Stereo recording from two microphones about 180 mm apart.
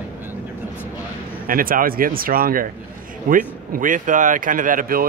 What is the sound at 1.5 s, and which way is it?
Speech, 50° right (ahead or behind).